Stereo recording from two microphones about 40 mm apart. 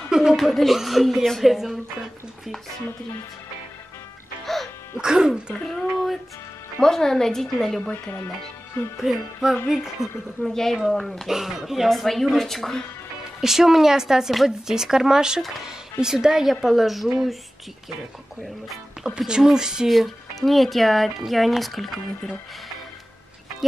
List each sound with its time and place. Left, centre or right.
0.1 s chuckle: centre
0.4 s speech: centre
4.9 s a woman's voice: centre
5.5 s a woman's voice: centre
9.0 s a woman's voice: centre
10.4 s a woman's voice: centre
11.2 s speech: centre
13.4 s a woman's voice: centre
19.0 s a woman's voice: centre
19.9 s speech: centre